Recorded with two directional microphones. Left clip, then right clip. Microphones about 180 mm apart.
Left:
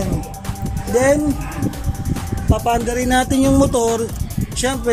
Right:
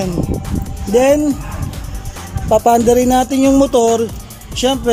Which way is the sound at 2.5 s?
25° right (ahead or behind).